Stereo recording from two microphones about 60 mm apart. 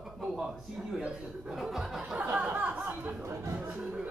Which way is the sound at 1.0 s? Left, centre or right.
Centre.